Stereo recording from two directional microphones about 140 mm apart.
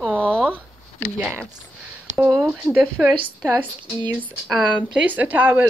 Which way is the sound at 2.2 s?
5° right (ahead or behind).